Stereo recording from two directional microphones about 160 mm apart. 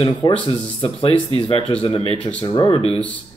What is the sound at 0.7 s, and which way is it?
A man's voice, 35° left (ahead or behind).